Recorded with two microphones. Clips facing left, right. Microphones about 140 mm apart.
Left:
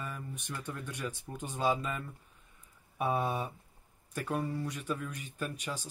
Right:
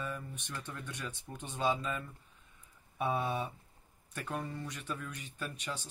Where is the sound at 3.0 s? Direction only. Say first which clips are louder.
Left 2 dB; 10° left (ahead or behind).